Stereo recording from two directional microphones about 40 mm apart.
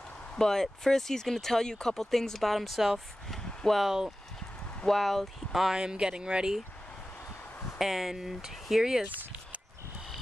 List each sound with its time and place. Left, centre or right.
0.4 s speech: centre
3.3 s a sound: centre
3.8 s speech: centre
4.8 s speech: centre
5.8 s speech: centre
7.8 s speech: centre